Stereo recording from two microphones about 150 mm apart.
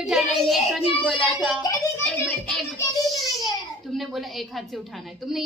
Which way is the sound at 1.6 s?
20° left (ahead or behind).